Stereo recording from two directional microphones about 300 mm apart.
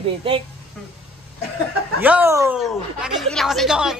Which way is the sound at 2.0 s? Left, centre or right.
Centre.